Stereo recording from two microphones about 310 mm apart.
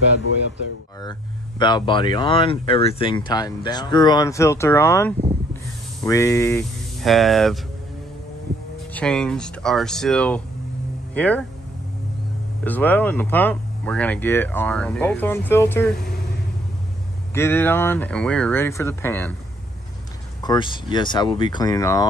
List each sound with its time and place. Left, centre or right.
1.6 s speech: centre
8.9 s speech: centre
12.6 s speech: centre
17.3 s speech: centre
20.4 s speech: centre